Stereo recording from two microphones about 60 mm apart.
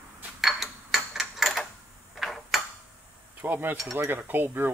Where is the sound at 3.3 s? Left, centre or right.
Right.